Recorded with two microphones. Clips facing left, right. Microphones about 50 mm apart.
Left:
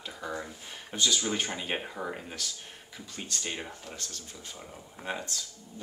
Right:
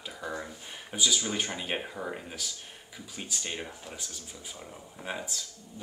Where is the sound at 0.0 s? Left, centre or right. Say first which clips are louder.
Even; centre.